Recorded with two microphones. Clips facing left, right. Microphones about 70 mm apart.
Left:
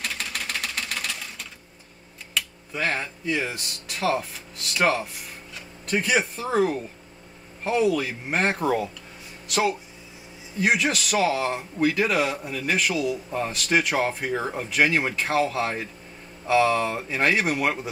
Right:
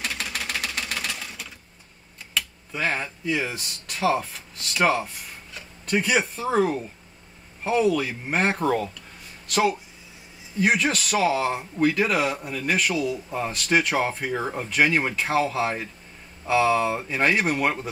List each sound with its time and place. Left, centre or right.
0.0 s typewriter: centre
2.3 s speech: centre